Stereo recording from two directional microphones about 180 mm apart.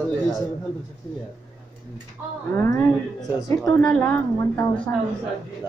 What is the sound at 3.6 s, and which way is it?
A woman's voice, 5° left (ahead or behind).